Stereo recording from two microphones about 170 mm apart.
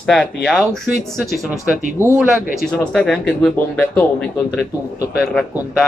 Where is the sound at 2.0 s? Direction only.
15° left (ahead or behind).